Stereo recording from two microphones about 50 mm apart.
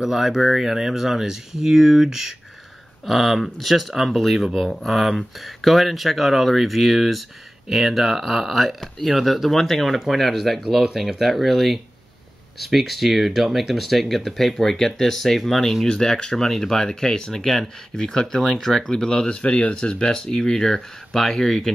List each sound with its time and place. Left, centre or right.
0.0 s speech: centre